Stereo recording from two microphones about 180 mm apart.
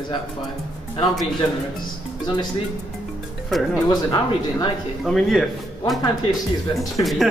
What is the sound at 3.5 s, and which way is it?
Speech, centre (ahead or behind).